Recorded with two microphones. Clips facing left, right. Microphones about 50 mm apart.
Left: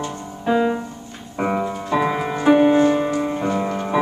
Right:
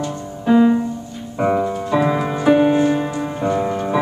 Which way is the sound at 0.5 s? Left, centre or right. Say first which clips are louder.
Right 5 dB; centre.